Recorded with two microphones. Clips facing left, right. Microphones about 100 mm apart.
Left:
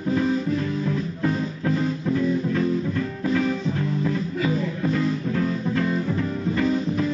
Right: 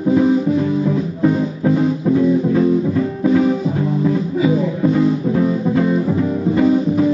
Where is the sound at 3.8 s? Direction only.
25° right (ahead or behind).